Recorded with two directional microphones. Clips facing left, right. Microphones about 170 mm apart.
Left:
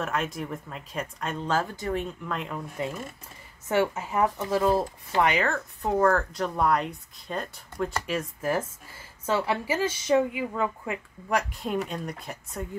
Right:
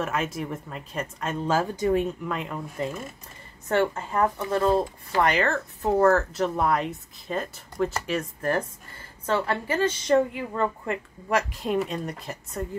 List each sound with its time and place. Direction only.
0.0 s speech: 5° right (ahead or behind)
1.6 s speech: 15° right (ahead or behind)
2.3 s a woman's voice: centre (ahead or behind)